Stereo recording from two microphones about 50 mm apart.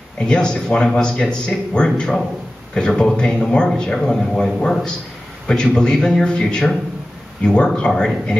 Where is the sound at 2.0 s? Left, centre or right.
Centre.